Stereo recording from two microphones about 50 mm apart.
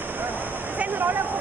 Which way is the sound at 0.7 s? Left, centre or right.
Right.